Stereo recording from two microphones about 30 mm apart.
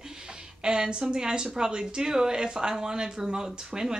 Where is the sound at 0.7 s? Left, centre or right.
Right.